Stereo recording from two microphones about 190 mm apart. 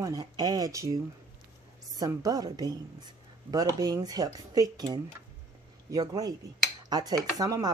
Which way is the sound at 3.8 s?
20° right (ahead or behind).